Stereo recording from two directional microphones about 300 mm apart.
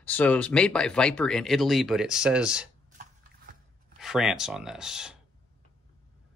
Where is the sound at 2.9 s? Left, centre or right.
Right.